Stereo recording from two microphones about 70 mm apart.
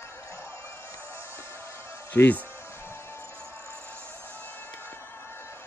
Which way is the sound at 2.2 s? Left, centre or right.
Left.